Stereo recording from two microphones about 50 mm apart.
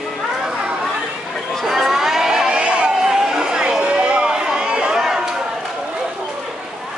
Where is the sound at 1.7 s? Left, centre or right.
Centre.